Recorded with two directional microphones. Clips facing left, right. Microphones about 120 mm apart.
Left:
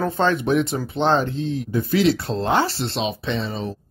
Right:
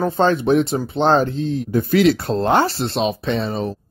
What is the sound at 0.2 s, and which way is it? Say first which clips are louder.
Speech: right 4 dB; 35° right (ahead or behind).